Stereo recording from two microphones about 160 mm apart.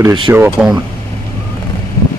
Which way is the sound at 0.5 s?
5° right (ahead or behind).